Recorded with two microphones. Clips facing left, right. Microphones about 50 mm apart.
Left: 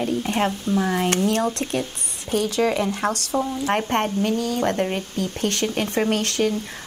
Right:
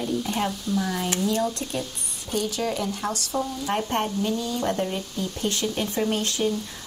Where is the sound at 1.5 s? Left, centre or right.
Left.